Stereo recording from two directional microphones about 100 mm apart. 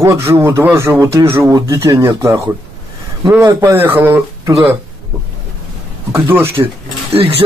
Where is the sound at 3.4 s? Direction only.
30° right (ahead or behind).